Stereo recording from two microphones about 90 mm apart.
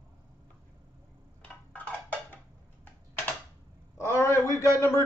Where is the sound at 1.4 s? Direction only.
15° left (ahead or behind).